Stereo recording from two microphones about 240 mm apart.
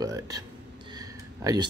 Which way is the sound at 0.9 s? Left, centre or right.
Centre.